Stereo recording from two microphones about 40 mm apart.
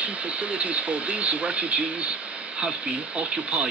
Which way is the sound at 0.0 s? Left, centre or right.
Right.